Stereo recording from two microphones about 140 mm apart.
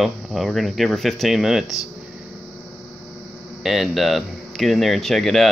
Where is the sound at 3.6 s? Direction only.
Centre (ahead or behind).